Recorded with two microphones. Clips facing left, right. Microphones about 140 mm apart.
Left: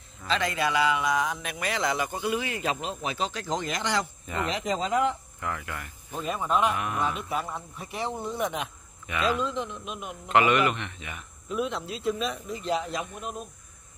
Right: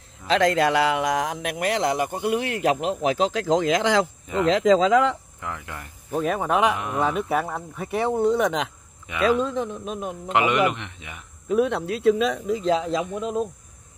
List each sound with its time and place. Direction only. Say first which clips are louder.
0.3 s speech: right 8 dB; 80° right
5.4 s speech: even; 15° right (ahead or behind)
6.1 s speech: right 5 dB; 60° right (ahead or behind); by 6.8 s 80° right
6.8 s speech: right 4 dB; 25° right (ahead or behind)
7.2 s speech: right 7 dB; 60° right (ahead or behind); by 8.7 s 90° right
9.0 s speech: right 6 dB; 20° right (ahead or behind)
9.4 s a man's voice: right 5 dB; 45° right (ahead or behind)
10.2 s speech: right 1 dB; 20° right (ahead or behind)
11.4 s speech: right 8 dB; 55° right (ahead or behind); by 12.9 s 90° right